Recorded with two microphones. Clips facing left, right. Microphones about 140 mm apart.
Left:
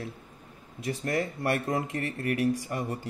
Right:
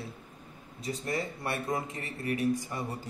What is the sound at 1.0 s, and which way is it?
Speech, 60° left (ahead or behind).